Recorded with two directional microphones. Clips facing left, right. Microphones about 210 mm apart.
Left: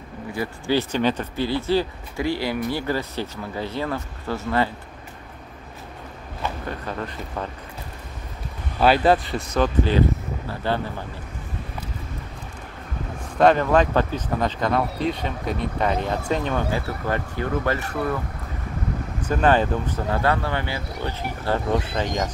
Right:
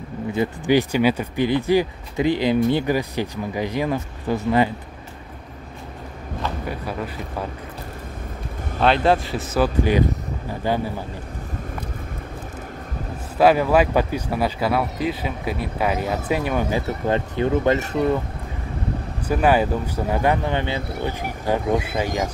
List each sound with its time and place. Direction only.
0.3 s speech: 20° right (ahead or behind)
6.6 s speech: 10° right (ahead or behind)
8.7 s speech: 5° left (ahead or behind); by 11.1 s 15° right (ahead or behind)
13.4 s speech: 5° right (ahead or behind)
16.8 s speech: 20° right (ahead or behind)
19.2 s speech: 10° right (ahead or behind)